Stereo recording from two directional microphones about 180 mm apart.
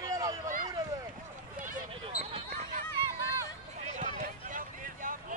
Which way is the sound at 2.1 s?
40° right (ahead or behind).